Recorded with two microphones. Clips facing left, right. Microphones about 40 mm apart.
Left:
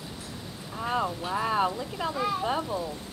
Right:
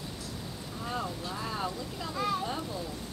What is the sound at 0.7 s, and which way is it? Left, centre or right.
Speech, left.